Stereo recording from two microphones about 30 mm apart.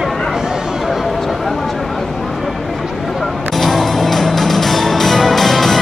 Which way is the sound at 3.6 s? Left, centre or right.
Centre.